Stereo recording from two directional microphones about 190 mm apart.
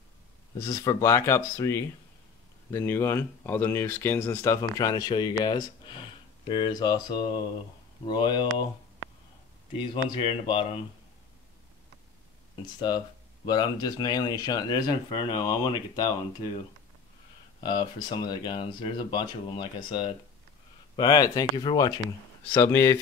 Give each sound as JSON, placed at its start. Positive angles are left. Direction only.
{"t": 0.6, "sound": "speech", "side_deg": 15}
{"t": 9.8, "sound": "speech", "side_deg": 25}
{"t": 12.7, "sound": "speech", "side_deg": 20}
{"t": 17.6, "sound": "speech", "side_deg": 20}